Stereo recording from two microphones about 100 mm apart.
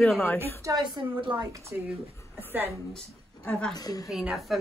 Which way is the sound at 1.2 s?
55° right (ahead or behind).